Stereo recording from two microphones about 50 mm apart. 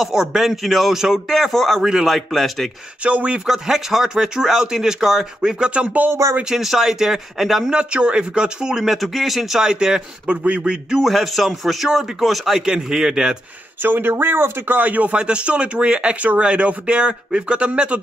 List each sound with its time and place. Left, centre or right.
0.0 s a man's voice: centre
1.3 s a man's voice: centre
3.0 s speech: right
3.4 s speech: centre
5.4 s speech: centre
6.2 s speech: right
6.5 s speech: centre
7.7 s speech: centre
8.8 s a man's voice: centre
10.3 s speech: right
11.0 s a man's voice: centre
12.6 s speech: centre
13.8 s speech: right
15.1 s speech: centre